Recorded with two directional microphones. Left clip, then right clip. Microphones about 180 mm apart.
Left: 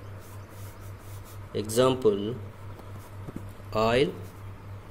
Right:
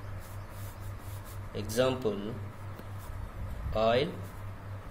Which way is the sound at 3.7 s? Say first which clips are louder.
Left 3 dB; 50° left (ahead or behind).